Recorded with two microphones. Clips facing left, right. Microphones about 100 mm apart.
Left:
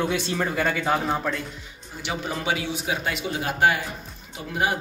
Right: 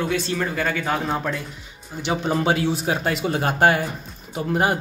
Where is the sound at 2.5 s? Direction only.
40° right (ahead or behind).